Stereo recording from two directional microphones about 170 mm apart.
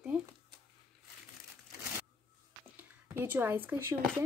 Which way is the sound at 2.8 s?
10° right (ahead or behind).